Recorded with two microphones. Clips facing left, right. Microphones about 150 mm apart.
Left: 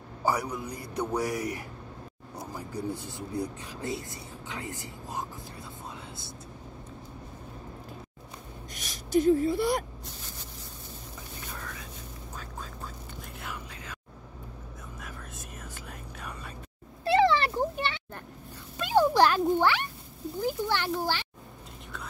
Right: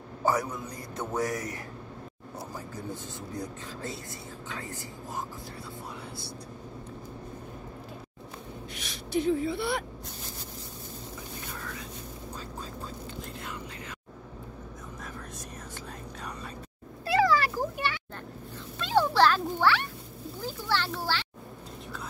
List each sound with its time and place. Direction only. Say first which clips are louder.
0.2 s speech: right 1 dB; 15° left (ahead or behind)
8.7 s speech: left 4 dB; 45° left (ahead or behind)
15.0 s whispering: right 2 dB; 10° left (ahead or behind)
17.0 s a sound: left 2 dB; 25° left (ahead or behind)
18.8 s a sound: left 1 dB; 15° left (ahead or behind)
20.4 s oink: left 2 dB; 15° left (ahead or behind)